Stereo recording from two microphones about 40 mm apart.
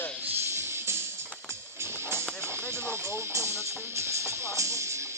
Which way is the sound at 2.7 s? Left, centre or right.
Right.